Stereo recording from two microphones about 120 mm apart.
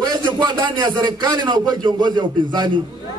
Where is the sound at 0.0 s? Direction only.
40° right (ahead or behind).